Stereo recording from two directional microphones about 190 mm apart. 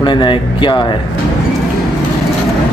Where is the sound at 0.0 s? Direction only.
25° left (ahead or behind).